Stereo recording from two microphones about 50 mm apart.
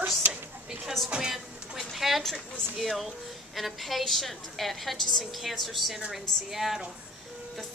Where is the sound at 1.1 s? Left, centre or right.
Centre.